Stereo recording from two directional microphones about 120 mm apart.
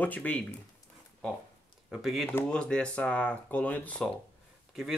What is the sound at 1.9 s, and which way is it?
Speech, centre (ahead or behind).